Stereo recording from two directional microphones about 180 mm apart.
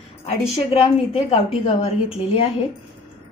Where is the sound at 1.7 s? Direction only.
30° left (ahead or behind).